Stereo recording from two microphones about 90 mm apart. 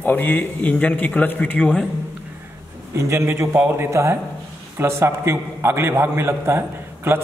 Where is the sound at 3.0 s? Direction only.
30° right (ahead or behind).